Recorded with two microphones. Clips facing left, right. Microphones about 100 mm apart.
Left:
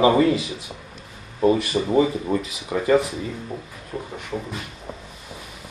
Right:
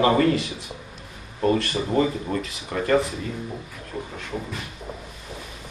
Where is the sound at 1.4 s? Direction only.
10° left (ahead or behind).